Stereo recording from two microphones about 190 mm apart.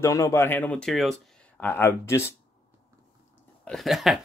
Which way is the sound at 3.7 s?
Centre (ahead or behind).